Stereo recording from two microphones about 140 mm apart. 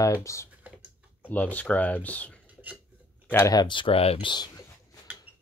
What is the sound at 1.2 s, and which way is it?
Speech, 10° left (ahead or behind).